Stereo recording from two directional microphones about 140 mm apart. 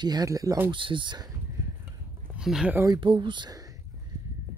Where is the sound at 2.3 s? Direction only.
5° right (ahead or behind).